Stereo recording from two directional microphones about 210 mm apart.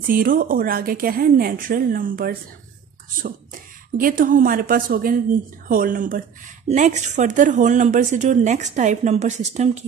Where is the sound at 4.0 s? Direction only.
40° right (ahead or behind).